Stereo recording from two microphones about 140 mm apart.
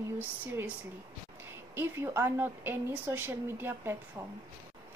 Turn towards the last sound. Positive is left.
turn(degrees=-15)  # may be behind; listen again after turning